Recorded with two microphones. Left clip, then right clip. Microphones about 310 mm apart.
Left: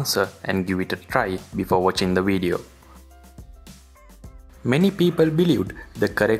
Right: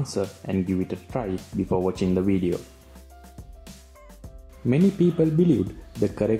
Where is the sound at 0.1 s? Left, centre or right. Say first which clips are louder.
Left 6 dB; left.